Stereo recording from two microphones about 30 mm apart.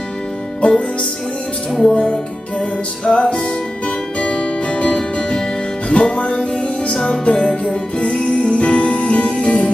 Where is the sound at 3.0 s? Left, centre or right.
Left.